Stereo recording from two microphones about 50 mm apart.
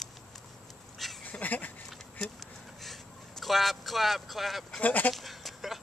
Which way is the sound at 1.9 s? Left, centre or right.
Centre.